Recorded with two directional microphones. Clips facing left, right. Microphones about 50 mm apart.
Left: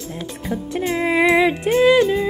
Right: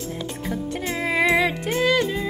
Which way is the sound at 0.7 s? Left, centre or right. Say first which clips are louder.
Left 6 dB; centre.